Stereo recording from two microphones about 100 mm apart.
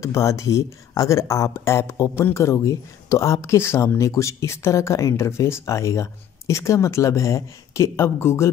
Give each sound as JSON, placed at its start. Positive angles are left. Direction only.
{"t": 0.0, "sound": "speech", "side_deg": 30}